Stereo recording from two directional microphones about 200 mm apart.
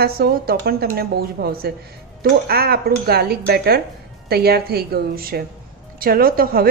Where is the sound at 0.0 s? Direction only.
50° right (ahead or behind).